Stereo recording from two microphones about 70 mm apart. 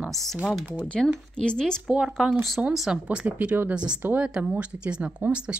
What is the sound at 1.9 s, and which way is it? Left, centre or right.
A woman's voice, centre.